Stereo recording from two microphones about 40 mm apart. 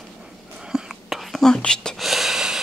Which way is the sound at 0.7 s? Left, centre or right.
Centre.